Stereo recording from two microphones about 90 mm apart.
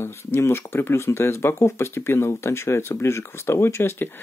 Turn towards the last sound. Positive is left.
turn(degrees=25)  # may be behind; listen again after turning